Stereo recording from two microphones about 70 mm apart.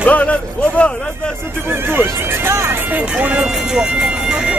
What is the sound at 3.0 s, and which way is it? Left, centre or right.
Speech, centre.